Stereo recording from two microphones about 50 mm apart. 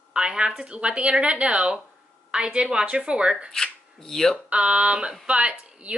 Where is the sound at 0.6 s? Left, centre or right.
Right.